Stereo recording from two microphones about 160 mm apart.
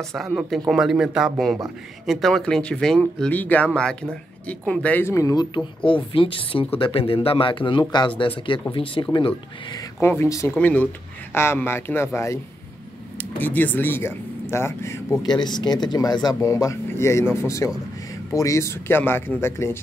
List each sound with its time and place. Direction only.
0.1 s speech: centre (ahead or behind); by 9.8 s 30° left (ahead or behind)
9.9 s speech: 15° left (ahead or behind)
13.4 s speech: 10° left (ahead or behind)
15.3 s speech: 25° left (ahead or behind)